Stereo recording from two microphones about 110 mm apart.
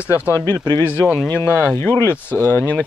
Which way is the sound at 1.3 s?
20° left (ahead or behind).